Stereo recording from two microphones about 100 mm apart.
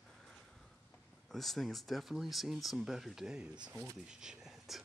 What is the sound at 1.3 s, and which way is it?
Speech, centre (ahead or behind).